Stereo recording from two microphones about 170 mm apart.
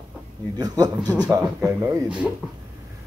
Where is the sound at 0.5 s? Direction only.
20° right (ahead or behind).